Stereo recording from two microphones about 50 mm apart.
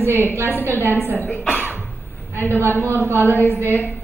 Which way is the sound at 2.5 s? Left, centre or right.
Right.